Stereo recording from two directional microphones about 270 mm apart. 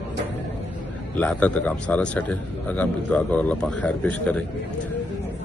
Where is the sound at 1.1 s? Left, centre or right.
Centre.